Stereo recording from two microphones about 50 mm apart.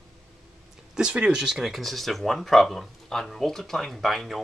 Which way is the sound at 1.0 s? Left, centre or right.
Centre.